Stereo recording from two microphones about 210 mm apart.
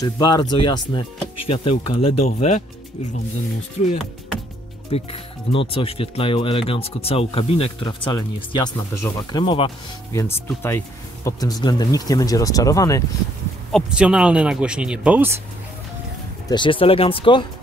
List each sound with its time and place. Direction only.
0.0 s speech: 20° left (ahead or behind)
3.8 s speech: 35° left (ahead or behind)
4.9 s speech: 25° left (ahead or behind)
10.1 s speech: 10° left (ahead or behind)
13.7 s speech: centre (ahead or behind)
16.4 s speech: 20° left (ahead or behind)